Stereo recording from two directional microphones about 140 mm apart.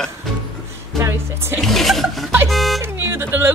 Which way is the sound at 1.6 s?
Centre (ahead or behind).